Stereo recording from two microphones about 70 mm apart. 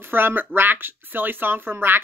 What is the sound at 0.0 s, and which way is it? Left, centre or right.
Speech, right.